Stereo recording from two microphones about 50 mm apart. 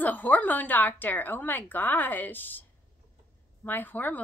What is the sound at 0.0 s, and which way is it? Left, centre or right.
A woman's voice, left.